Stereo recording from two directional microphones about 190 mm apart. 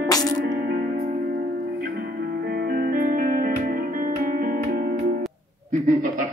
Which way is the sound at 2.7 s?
50° right (ahead or behind).